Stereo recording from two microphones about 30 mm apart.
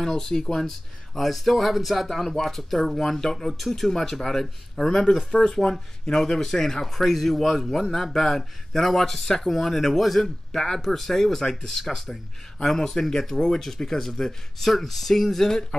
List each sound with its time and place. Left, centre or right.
0.0 s speech: centre
0.6 s speech: centre
3.4 s speech: centre
5.3 s speech: left
5.6 s speech: centre
10.5 s speech: centre